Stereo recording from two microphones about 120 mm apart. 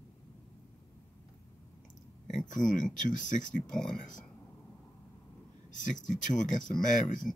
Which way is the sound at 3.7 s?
5° left (ahead or behind).